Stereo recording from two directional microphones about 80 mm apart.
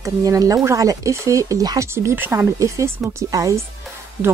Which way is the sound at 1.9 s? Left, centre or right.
Right.